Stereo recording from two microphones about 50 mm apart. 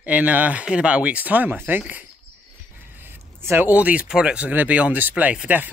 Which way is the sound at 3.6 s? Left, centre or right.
Right.